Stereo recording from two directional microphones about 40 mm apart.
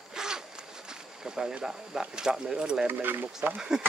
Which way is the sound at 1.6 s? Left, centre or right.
Centre.